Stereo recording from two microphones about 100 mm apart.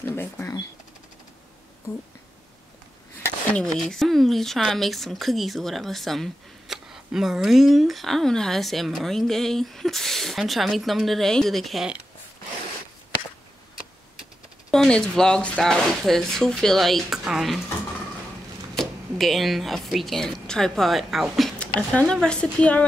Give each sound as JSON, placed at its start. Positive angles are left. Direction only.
{"t": 0.1, "sound": "a sound", "side_deg": 25}
{"t": 3.5, "sound": "speech", "side_deg": 5}
{"t": 14.7, "sound": "speech", "side_deg": 5}
{"t": 18.8, "sound": "a woman's voice", "side_deg": 0}